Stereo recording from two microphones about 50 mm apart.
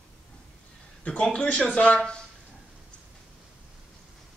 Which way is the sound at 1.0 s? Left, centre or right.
Left.